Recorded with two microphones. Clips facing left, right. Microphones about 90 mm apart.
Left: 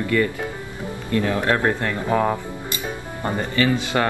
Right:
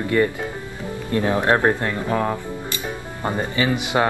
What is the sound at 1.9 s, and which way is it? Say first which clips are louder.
Speech: left 2 dB; 5° left (ahead or behind).